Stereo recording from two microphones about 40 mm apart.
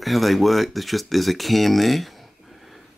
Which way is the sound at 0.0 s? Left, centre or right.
Centre.